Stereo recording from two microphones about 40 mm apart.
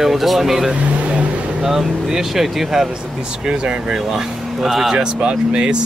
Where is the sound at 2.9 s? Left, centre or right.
Right.